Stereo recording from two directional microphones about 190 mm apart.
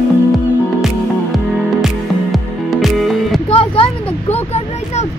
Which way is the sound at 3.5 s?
30° left (ahead or behind).